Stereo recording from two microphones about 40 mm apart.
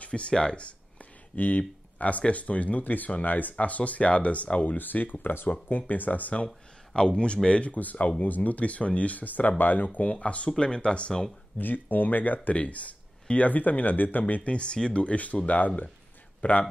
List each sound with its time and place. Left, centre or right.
0.0 s speech: left
4.7 s speech: left
6.9 s speech: left
10.1 s speech: left
11.5 s speech: left
14.2 s speech: left